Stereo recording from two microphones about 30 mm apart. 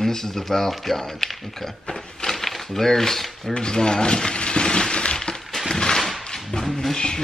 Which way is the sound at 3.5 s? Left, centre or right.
Left.